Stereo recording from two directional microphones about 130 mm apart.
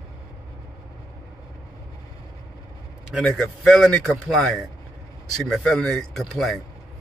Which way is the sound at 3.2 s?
Centre (ahead or behind).